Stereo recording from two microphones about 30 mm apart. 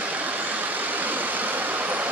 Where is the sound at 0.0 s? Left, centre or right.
Right.